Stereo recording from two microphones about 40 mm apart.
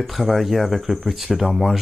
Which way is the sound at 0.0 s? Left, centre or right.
Centre.